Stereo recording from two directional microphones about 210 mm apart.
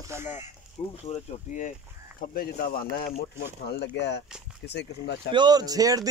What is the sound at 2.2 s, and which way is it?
Speech, 45° left (ahead or behind).